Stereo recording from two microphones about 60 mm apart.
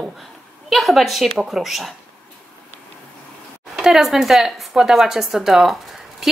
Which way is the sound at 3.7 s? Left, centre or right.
Centre.